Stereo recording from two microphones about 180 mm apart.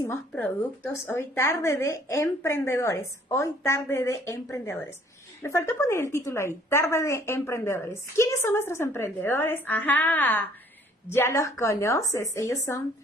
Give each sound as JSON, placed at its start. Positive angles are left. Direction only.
{"t": 0.0, "sound": "a woman's voice", "side_deg": 10}